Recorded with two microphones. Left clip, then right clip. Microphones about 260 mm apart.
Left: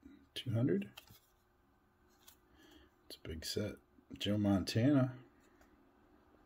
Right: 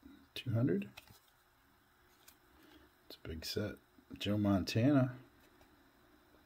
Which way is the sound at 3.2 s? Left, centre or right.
Centre.